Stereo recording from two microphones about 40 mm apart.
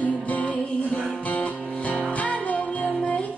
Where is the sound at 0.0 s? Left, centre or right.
Left.